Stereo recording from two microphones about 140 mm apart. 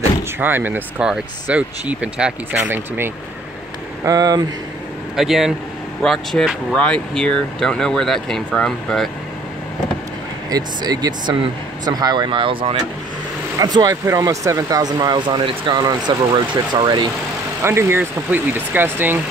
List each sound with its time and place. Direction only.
0.4 s speech: 15° right (ahead or behind)
4.0 s speech: 25° right (ahead or behind)
5.1 s speech: centre (ahead or behind)
10.5 s speech: 30° right (ahead or behind)
13.6 s speech: 30° right (ahead or behind)
17.6 s speech: 20° right (ahead or behind)